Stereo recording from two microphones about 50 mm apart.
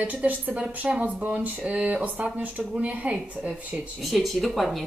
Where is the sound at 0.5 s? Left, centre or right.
Right.